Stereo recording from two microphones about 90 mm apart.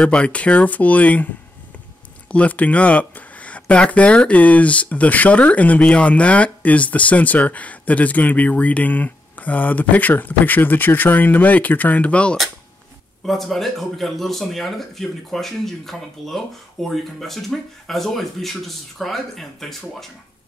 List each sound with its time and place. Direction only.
0.0 s speech: 10° left (ahead or behind)
2.3 s speech: 15° left (ahead or behind)
13.2 s speech: centre (ahead or behind)